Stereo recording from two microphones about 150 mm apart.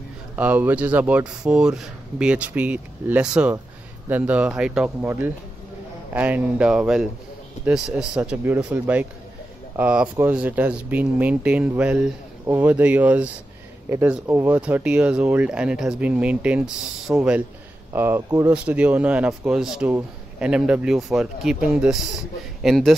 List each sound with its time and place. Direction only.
0.4 s speech: 10° right (ahead or behind)